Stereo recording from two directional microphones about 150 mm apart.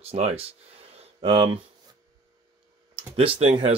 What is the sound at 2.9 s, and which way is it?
Speech, 40° right (ahead or behind).